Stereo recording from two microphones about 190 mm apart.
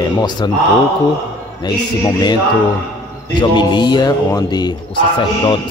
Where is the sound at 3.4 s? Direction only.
25° left (ahead or behind).